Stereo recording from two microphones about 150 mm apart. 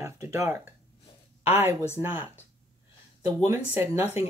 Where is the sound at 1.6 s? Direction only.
20° right (ahead or behind).